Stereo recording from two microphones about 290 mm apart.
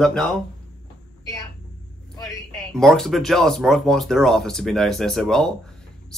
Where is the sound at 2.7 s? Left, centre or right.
Centre.